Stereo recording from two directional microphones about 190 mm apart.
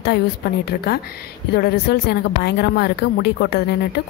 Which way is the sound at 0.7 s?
55° left (ahead or behind).